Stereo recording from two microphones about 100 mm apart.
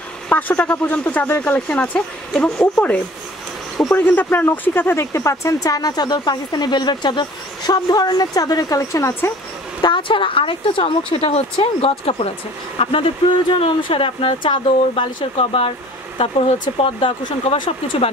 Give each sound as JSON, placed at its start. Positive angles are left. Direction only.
{"t": 0.3, "sound": "speech", "side_deg": 15}
{"t": 9.8, "sound": "speech", "side_deg": 50}
{"t": 12.7, "sound": "speech", "side_deg": 65}
{"t": 15.3, "sound": "speech", "side_deg": 75}
{"t": 16.6, "sound": "speech", "side_deg": 55}